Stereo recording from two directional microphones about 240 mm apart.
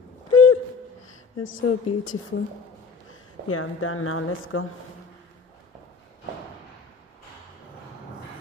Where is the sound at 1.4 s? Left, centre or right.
Left.